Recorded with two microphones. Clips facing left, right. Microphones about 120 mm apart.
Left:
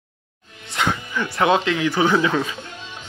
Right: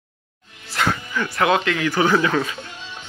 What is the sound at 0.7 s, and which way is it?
Speech, 20° left (ahead or behind).